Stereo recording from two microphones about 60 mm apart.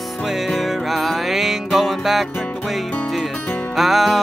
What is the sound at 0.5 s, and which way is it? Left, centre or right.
Music, centre.